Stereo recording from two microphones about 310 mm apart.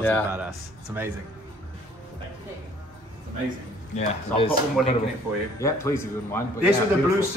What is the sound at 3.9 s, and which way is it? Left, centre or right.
Speech, centre.